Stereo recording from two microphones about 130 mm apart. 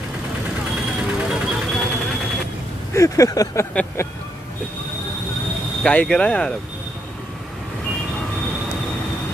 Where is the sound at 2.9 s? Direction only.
25° left (ahead or behind).